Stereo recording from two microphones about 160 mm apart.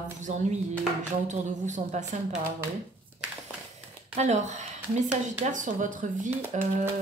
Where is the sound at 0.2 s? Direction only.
45° right (ahead or behind).